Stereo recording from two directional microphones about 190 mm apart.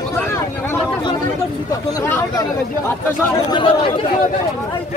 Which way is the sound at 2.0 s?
20° left (ahead or behind).